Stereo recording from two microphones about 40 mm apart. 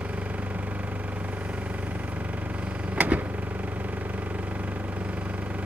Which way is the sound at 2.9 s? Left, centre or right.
Right.